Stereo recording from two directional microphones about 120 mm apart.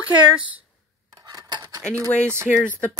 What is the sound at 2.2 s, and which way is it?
Speech, 20° right (ahead or behind).